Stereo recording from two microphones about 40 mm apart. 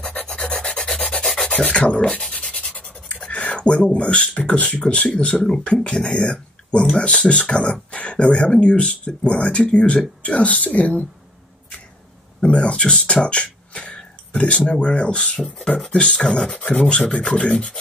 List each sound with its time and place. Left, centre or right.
0.2 s filing: left
1.4 s rub: left
3.5 s a woman's voice: left
4.6 s a woman's voice: left
12.4 s a sound: left
14.7 s speech: left
16.5 s speech: left